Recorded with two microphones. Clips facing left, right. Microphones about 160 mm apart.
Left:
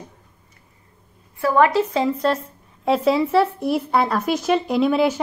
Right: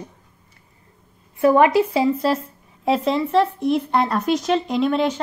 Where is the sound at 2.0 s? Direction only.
Centre (ahead or behind).